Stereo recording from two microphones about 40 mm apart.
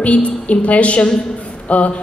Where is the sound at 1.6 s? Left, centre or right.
Left.